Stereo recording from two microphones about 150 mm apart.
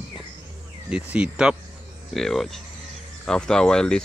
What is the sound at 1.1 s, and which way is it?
Speech, 5° right (ahead or behind).